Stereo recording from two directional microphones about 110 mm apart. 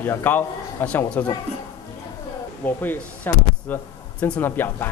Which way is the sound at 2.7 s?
15° left (ahead or behind).